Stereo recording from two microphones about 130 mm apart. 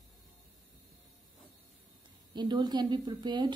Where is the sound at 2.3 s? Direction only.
35° right (ahead or behind).